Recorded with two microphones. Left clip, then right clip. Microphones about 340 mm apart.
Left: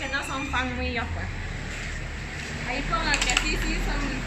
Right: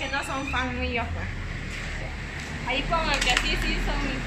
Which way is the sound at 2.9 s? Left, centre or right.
Centre.